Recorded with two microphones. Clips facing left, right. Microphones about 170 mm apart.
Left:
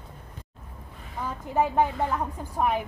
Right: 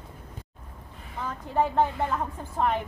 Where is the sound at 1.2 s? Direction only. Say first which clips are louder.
Left 1 dB; 10° left (ahead or behind).